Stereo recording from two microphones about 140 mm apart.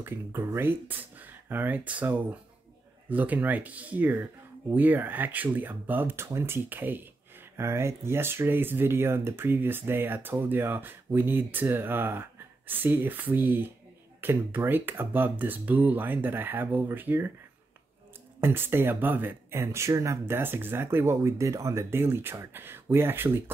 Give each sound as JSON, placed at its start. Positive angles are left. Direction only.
{"t": 0.0, "sound": "speech", "side_deg": -15}
{"t": 18.4, "sound": "speech", "side_deg": -15}